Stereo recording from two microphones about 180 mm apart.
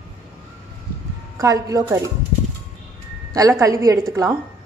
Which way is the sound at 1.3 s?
20° right (ahead or behind).